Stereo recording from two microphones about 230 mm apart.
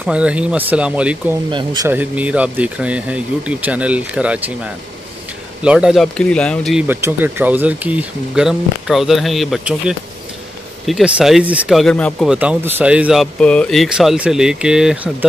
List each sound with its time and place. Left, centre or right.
0.0 s speech: centre
1.5 s speech: centre
1.9 s speech: centre
5.6 s speech: centre